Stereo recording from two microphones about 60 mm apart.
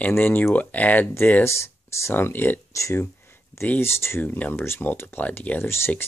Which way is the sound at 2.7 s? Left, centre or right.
Left.